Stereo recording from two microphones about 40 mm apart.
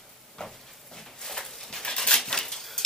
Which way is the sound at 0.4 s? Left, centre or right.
Centre.